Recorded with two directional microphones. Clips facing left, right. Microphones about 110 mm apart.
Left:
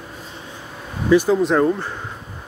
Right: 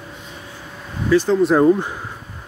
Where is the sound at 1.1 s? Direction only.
15° left (ahead or behind).